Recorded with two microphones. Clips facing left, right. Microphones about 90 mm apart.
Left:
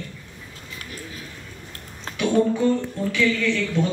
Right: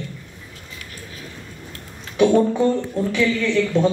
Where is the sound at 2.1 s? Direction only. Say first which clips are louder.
Right 7 dB; 40° left (ahead or behind).